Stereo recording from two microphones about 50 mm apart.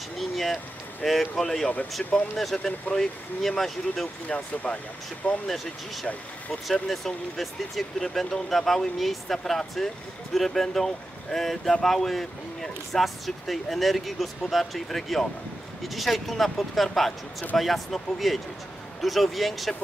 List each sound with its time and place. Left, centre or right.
0.2 s a sound: centre
1.0 s speech: centre
2.0 s speech: left
2.3 s speech: centre
5.2 s speech: left
6.7 s speech: centre